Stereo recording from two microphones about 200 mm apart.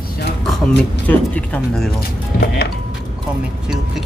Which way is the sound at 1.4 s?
5° left (ahead or behind).